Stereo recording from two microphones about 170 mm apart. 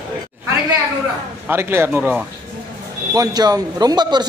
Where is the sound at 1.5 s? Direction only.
15° right (ahead or behind).